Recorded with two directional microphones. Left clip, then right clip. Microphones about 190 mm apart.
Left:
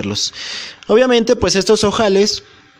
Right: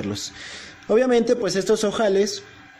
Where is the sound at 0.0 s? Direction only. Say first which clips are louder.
Left 10 dB; 25° left (ahead or behind).